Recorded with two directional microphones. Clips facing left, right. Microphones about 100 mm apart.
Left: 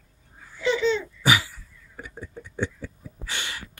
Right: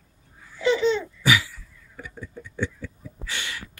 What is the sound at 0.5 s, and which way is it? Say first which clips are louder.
Babbling: right 2 dB; 20° right (ahead or behind).